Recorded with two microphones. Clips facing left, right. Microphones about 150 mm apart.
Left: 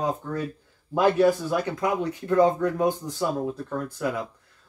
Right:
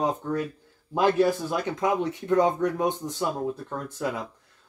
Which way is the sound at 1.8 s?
20° right (ahead or behind).